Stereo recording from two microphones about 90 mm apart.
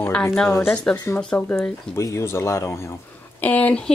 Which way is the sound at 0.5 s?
30° left (ahead or behind).